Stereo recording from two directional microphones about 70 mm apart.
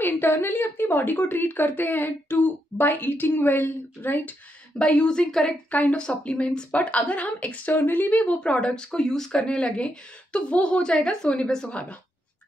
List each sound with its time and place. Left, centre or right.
0.0 s a woman's voice: left; by 5.5 s centre
5.7 s a woman's voice: left